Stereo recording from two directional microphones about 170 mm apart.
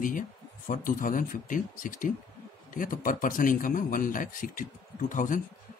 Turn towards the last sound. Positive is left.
turn(degrees=50)  # may be behind; listen again after turning